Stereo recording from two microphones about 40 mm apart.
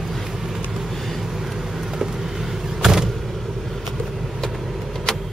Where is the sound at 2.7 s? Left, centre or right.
Centre.